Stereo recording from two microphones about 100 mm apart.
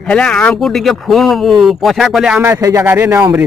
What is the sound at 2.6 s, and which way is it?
Speech, 35° right (ahead or behind).